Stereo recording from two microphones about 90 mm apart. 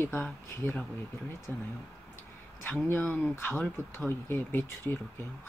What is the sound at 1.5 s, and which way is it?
Speech, 25° left (ahead or behind).